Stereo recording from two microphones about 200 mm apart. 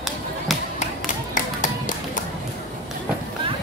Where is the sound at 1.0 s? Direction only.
40° left (ahead or behind).